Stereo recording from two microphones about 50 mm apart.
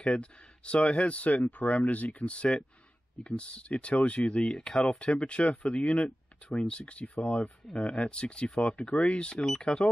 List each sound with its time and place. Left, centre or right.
0.0 s speech: left
9.3 s speech: centre